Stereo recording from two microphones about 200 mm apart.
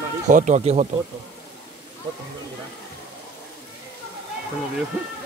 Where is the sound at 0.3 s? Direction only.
40° right (ahead or behind).